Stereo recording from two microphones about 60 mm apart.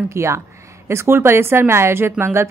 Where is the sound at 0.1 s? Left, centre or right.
Right.